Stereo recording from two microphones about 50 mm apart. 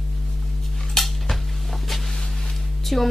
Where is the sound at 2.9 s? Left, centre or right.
Centre.